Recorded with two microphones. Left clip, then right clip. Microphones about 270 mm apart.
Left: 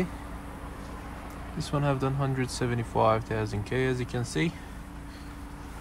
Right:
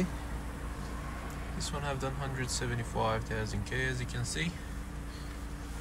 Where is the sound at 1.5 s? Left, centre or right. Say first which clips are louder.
Left 8 dB; centre.